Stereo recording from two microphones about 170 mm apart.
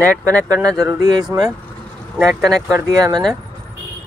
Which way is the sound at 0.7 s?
20° right (ahead or behind).